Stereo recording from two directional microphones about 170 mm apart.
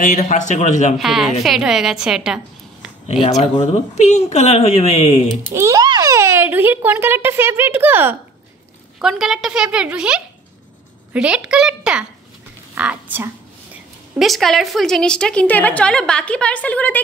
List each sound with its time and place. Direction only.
0.2 s a man's voice: 45° left (ahead or behind)
0.9 s a woman's voice: centre (ahead or behind)
3.5 s speech: 45° left (ahead or behind)
5.5 s a child's voice: 20° right (ahead or behind)
14.1 s a woman's voice: centre (ahead or behind)